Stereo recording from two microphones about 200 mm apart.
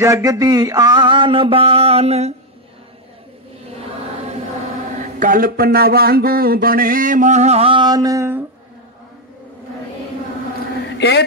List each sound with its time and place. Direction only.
0.0 s mantra: 15° right (ahead or behind); by 2.3 s 30° right (ahead or behind)
4.9 s speech: 45° right (ahead or behind); by 8.5 s 15° right (ahead or behind)
11.0 s speech: 60° left (ahead or behind)